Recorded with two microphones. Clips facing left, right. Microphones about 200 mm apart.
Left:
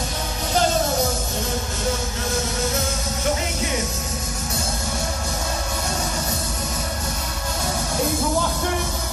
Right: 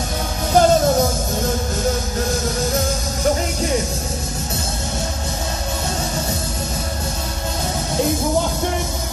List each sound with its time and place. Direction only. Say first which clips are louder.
0.5 s music: right 7 dB; 45° right (ahead or behind)